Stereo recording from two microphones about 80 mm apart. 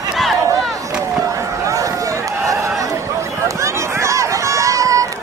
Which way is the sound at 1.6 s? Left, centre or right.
Right.